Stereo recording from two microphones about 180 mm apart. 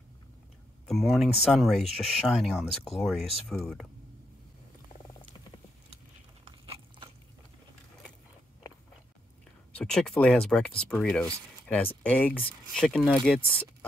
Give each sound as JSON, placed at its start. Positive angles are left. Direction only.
{"t": 0.8, "sound": "speech", "side_deg": 0}
{"t": 6.4, "sound": "a sound", "side_deg": -30}
{"t": 9.8, "sound": "speech", "side_deg": 5}